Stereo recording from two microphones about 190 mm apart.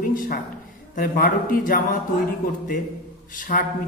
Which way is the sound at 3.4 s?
45° left (ahead or behind).